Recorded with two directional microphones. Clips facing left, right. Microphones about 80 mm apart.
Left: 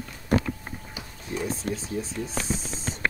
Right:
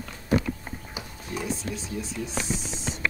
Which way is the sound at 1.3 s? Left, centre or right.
Left.